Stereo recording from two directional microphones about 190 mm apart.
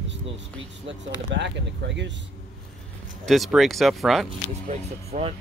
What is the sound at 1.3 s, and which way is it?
Speech, 70° right (ahead or behind).